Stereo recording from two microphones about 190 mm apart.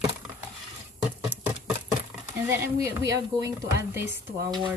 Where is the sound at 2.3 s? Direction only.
15° right (ahead or behind).